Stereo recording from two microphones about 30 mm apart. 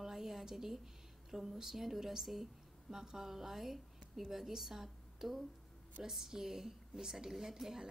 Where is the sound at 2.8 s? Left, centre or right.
Centre.